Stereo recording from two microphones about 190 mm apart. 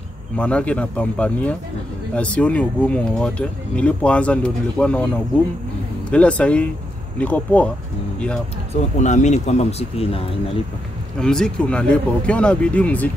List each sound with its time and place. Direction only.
0.4 s speech: 5° left (ahead or behind)
8.9 s speech: 40° left (ahead or behind)
11.1 s speech: 5° left (ahead or behind)